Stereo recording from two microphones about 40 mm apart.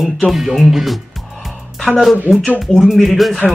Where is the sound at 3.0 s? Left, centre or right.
Centre.